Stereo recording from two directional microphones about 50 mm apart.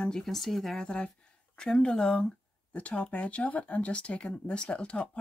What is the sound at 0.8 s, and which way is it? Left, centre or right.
Speech, centre.